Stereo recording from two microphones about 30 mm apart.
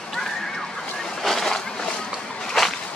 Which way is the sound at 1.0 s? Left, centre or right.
Centre.